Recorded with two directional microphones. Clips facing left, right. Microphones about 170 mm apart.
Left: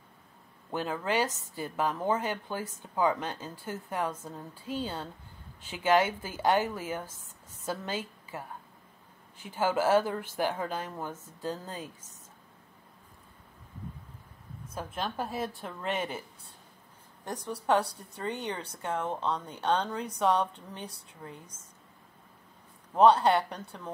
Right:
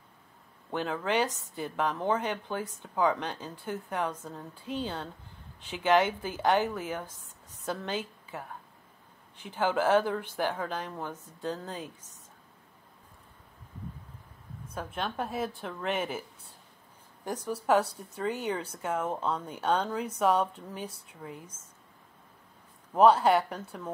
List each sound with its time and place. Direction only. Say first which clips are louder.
0.7 s a woman's voice: right 1 dB; centre (ahead or behind)
14.7 s a woman's voice: even; centre (ahead or behind)
22.9 s a woman's voice: even; 5° right (ahead or behind)